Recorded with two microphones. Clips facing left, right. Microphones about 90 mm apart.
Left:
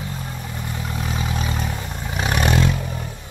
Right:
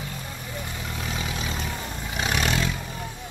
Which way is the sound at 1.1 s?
40° left (ahead or behind).